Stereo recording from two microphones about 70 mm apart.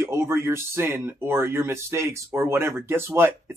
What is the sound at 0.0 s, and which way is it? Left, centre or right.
Speech, right.